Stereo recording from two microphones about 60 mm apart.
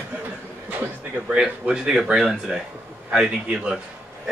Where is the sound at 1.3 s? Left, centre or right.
Centre.